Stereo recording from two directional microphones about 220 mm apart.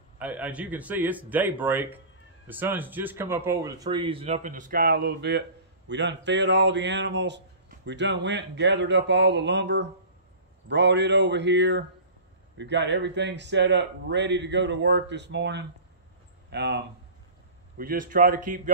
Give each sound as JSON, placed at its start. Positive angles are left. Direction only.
{"t": 0.2, "sound": "speech", "side_deg": -5}
{"t": 17.7, "sound": "speech", "side_deg": -40}